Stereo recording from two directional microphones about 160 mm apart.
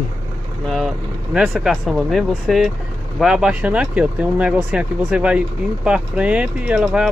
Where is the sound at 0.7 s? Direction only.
Centre (ahead or behind).